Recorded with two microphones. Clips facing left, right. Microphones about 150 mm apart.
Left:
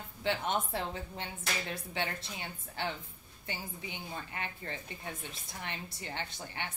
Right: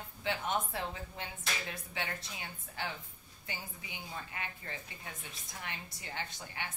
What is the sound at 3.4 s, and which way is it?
A woman's voice, 30° left (ahead or behind).